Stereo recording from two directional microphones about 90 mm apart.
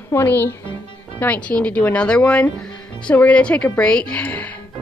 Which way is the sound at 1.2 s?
15° left (ahead or behind).